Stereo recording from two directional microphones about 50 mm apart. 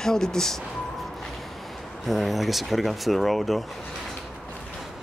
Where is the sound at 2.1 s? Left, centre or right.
Centre.